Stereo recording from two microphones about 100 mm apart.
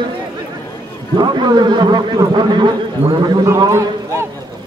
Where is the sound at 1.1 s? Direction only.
50° right (ahead or behind).